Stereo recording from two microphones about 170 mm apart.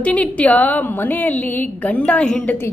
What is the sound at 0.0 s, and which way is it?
A woman's voice, 10° left (ahead or behind).